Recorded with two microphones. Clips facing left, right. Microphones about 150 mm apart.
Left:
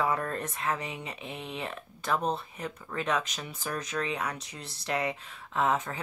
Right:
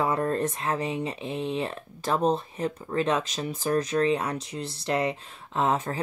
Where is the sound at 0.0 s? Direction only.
30° right (ahead or behind).